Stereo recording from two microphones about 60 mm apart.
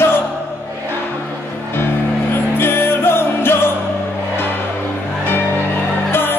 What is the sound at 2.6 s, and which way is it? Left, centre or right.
Music, left.